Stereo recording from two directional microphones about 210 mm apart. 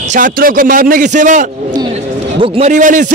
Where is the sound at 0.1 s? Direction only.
40° right (ahead or behind).